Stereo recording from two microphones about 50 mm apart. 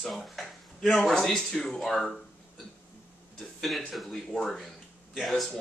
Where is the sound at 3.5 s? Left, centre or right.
Centre.